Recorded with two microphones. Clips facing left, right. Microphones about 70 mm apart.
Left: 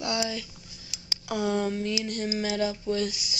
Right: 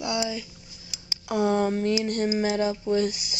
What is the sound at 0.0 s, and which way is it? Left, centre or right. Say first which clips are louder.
Speech: right 1 dB; centre.